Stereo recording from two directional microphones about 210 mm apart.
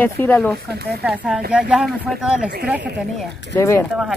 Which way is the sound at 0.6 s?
50° right (ahead or behind).